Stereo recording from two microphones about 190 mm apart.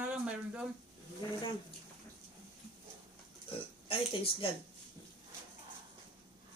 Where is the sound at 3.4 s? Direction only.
30° left (ahead or behind).